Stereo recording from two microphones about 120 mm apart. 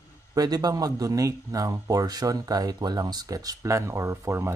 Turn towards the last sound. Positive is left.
turn(degrees=-20)  # may be behind; listen again after turning